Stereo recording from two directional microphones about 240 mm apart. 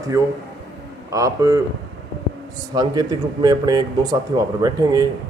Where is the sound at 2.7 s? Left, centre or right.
Centre.